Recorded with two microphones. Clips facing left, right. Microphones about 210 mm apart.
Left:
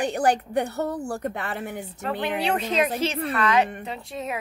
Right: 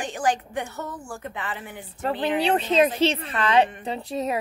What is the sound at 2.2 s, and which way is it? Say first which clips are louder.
A woman's voice: right 3 dB; 30° right (ahead or behind).